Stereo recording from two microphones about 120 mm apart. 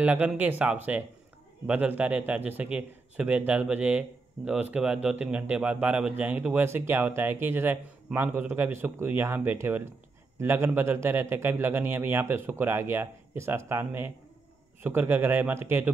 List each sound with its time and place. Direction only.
0.0 s a man's voice: 15° right (ahead or behind)